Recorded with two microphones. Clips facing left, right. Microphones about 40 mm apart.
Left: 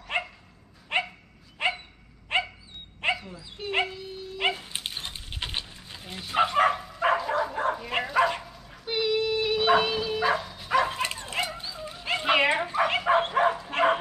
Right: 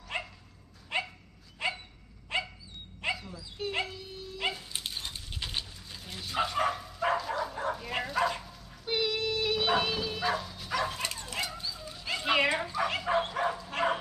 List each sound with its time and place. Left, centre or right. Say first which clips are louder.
0.1 s dog: left 7 dB; left
3.6 s speech: left 1 dB; centre
4.4 s dog: left 6 dB; left
7.5 s bow-wow: left 6 dB; left
8.0 s dog: left 6 dB; left
8.8 s dog: left 5 dB; centre
9.8 s bow-wow: left 5 dB; centre
10.7 s dog: left 7 dB; left